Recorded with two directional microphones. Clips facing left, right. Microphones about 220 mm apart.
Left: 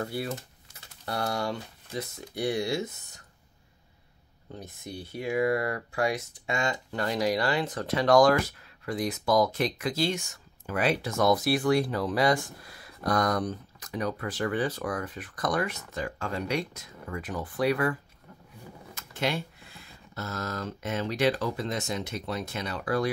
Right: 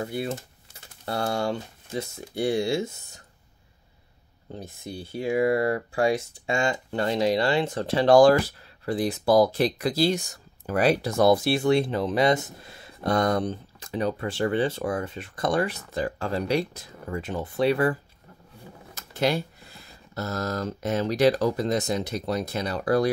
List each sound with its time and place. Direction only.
0.0 s speech: 20° right (ahead or behind)
4.5 s speech: 30° right (ahead or behind)
18.9 s speech: 35° right (ahead or behind)